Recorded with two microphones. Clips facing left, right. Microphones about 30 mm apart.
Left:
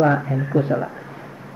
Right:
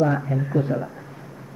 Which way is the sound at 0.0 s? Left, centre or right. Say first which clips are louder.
Left 3 dB; left.